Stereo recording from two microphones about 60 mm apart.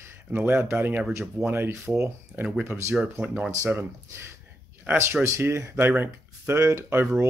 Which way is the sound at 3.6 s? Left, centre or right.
Right.